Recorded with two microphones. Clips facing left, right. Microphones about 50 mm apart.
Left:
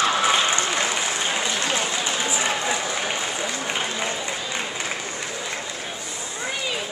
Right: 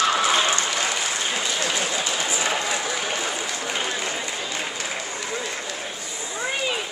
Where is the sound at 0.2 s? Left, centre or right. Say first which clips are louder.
Even; left.